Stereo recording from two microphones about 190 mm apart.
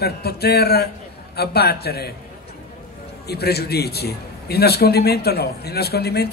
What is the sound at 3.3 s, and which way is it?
Speech, 55° left (ahead or behind).